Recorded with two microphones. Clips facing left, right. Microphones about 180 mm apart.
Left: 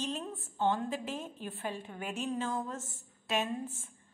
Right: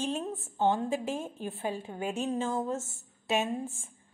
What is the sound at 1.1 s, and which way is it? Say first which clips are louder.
Speech: right 5 dB; 45° right (ahead or behind).